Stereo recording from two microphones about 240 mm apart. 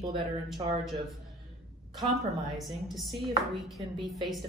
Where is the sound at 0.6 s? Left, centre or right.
Centre.